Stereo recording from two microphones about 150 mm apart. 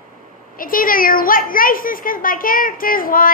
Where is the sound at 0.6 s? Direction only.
70° left (ahead or behind).